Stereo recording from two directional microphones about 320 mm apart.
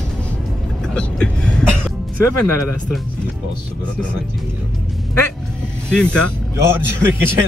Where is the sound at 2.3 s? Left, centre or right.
Left.